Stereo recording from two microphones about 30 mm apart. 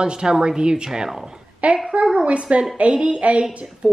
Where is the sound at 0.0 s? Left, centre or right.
Right.